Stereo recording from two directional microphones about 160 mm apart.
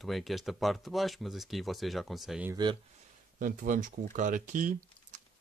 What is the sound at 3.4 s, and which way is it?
Speech, 60° right (ahead or behind).